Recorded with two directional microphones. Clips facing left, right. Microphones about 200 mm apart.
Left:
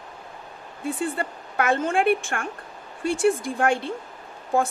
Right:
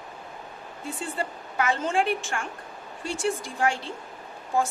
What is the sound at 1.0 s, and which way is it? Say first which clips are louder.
A woman's voice: left 1 dB; 55° left (ahead or behind).